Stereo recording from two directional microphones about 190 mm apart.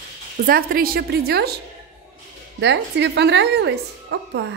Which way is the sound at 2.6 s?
65° right (ahead or behind).